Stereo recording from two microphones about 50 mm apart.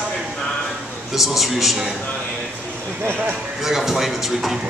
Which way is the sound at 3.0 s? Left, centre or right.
Right.